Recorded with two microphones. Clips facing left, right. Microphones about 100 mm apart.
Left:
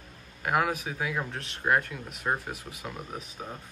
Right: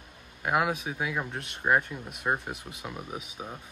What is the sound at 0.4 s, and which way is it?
Speech, 10° right (ahead or behind).